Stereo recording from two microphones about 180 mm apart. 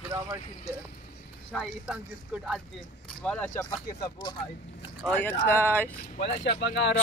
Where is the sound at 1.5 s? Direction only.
Centre (ahead or behind).